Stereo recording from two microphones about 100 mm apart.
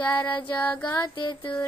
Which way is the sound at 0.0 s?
15° left (ahead or behind).